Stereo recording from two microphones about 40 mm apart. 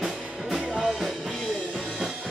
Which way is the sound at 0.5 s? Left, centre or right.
Centre.